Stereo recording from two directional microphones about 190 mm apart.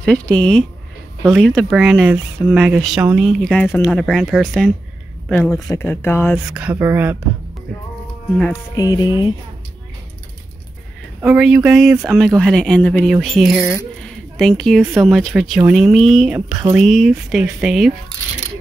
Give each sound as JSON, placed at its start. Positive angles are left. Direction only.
{"t": 0.0, "sound": "speech", "side_deg": 5}
{"t": 3.9, "sound": "speech", "side_deg": 0}
{"t": 5.3, "sound": "speech", "side_deg": 15}
{"t": 6.5, "sound": "speech", "side_deg": -10}
{"t": 8.7, "sound": "speech", "side_deg": 20}
{"t": 11.1, "sound": "speech", "side_deg": -5}